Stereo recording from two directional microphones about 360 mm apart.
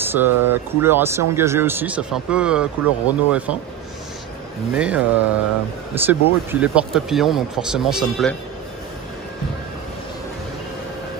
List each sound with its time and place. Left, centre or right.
0.0 s speech: centre
4.7 s speech: centre